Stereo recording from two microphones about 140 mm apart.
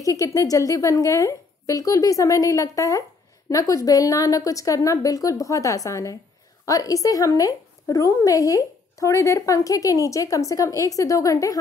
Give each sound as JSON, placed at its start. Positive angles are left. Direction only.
{"t": 0.0, "sound": "a woman's voice", "side_deg": 25}